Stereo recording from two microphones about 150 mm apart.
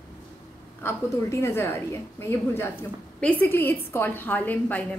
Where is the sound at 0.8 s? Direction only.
15° left (ahead or behind).